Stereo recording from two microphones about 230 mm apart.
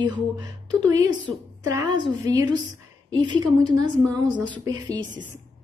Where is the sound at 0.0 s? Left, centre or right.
Centre.